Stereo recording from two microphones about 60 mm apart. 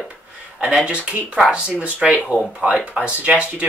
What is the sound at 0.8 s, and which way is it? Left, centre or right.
Speech, centre.